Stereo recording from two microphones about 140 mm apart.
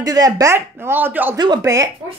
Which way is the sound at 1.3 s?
30° right (ahead or behind).